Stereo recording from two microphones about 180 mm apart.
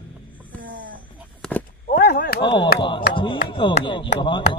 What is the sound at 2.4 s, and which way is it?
Speech, 30° left (ahead or behind).